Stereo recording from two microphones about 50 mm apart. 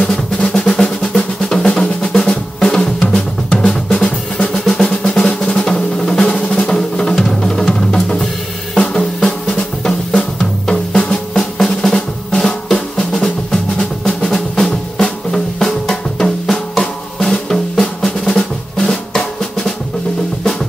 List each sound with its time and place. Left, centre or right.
0.0 s drum: centre
8.7 s drum kit: centre
9.2 s drum: centre
13.1 s drum: centre